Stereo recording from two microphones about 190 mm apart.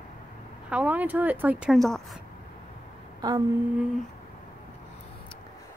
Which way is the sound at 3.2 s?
20° right (ahead or behind).